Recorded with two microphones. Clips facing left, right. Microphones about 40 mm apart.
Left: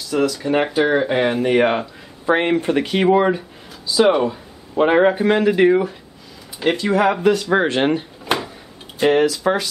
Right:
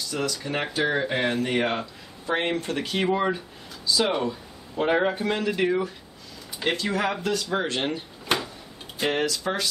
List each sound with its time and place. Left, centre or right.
0.0 s speech: centre
3.1 s speech: left
3.3 s speech: centre
4.7 s speech: left
6.6 s speech: centre
7.5 s speech: left
8.3 s tick-tock: centre
9.0 s speech: centre